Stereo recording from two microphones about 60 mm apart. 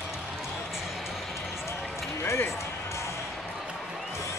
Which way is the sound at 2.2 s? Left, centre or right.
Left.